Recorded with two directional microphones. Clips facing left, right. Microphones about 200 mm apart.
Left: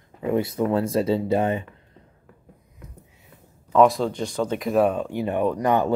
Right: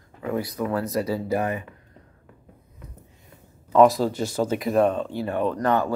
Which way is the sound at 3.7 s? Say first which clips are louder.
Right 1 dB; centre (ahead or behind).